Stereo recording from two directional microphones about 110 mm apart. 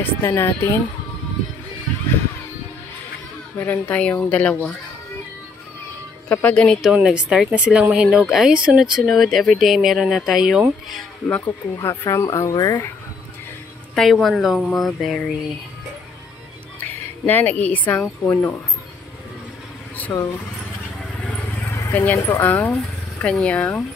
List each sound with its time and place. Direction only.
0.0 s speech: 20° left (ahead or behind)
3.5 s speech: 15° left (ahead or behind)
6.2 s speech: 15° left (ahead or behind)
6.8 s speech: 5° right (ahead or behind)
11.2 s speech: 15° left (ahead or behind)
11.7 s speech: 25° left (ahead or behind)
13.9 s speech: centre (ahead or behind)
17.3 s speech: 15° left (ahead or behind)
20.1 s speech: 35° left (ahead or behind)
21.7 s horse: 25° left (ahead or behind)
22.0 s speech: 15° left (ahead or behind)